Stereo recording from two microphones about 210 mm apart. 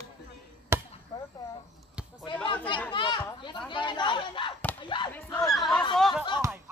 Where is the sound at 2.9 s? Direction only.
20° left (ahead or behind).